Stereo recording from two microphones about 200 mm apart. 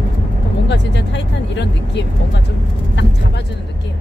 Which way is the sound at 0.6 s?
60° left (ahead or behind).